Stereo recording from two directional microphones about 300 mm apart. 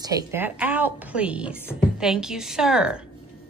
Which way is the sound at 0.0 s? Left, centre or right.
Centre.